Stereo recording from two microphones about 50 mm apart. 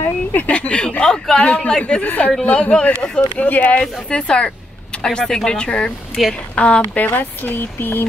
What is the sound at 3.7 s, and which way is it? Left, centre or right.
Speech, left.